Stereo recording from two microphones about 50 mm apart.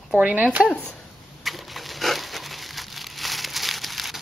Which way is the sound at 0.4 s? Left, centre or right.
Right.